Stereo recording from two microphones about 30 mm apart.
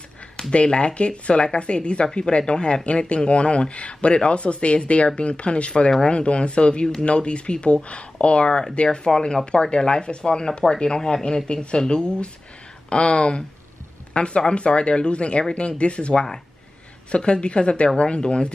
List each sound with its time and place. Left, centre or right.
0.5 s speech: left
2.8 s speech: left